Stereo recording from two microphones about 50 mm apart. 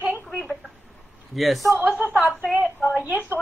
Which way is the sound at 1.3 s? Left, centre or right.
Centre.